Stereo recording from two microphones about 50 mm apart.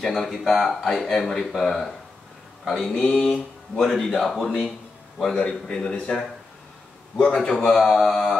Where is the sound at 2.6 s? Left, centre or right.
Centre.